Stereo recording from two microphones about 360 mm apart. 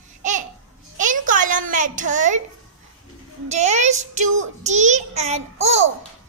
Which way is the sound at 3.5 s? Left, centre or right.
Centre.